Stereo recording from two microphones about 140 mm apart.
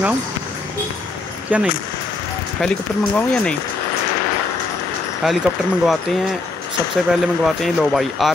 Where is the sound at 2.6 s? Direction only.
5° left (ahead or behind).